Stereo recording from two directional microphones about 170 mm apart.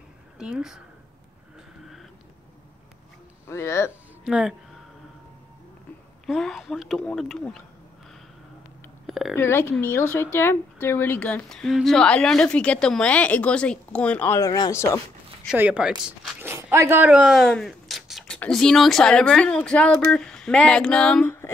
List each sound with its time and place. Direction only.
0.4 s speech: 5° right (ahead or behind)
3.4 s speech: 15° left (ahead or behind)
4.2 s speech: 5° right (ahead or behind)
6.2 s speech: centre (ahead or behind)
9.0 s a sound: centre (ahead or behind)
9.3 s speech: 15° left (ahead or behind)
15.4 s speech: 10° right (ahead or behind); by 21.5 s 10° left (ahead or behind)